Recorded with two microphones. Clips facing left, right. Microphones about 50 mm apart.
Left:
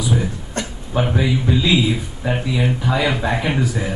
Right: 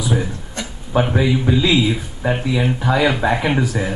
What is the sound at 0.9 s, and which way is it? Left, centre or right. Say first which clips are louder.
A man's voice: right 2 dB; centre.